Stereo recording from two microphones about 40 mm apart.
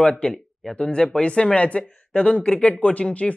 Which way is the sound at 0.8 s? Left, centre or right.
Left.